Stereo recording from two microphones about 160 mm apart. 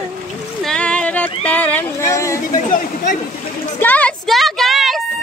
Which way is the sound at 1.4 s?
10° left (ahead or behind).